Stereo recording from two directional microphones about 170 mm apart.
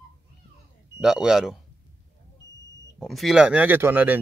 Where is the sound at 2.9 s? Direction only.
Centre (ahead or behind).